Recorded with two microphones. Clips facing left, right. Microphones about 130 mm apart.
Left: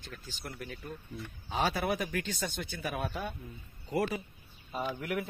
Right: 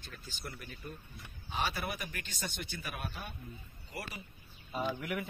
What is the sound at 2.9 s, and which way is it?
Speech, 90° left.